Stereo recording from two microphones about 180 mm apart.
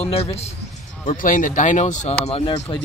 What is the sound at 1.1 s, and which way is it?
Speech, 45° left (ahead or behind).